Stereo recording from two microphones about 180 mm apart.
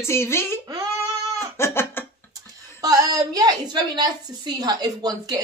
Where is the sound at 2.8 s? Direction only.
20° right (ahead or behind).